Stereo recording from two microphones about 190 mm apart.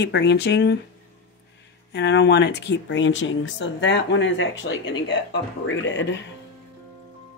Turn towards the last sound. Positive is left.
turn(degrees=75)  # may be behind; listen again after turning